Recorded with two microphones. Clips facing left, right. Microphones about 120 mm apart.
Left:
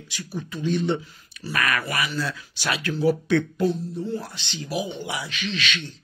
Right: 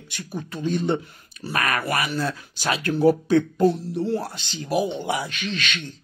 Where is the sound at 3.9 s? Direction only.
75° right (ahead or behind).